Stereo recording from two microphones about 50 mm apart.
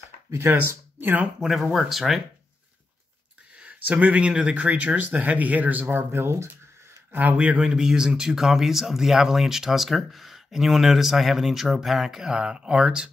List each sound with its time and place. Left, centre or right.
0.5 s speech: right
1.4 s speech: centre
3.5 s speech: right
6.1 s speech: right
7.1 s a man's voice: right
7.3 s a man's voice: right
7.7 s speech: centre